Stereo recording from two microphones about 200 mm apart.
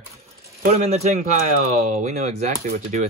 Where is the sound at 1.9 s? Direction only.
35° right (ahead or behind).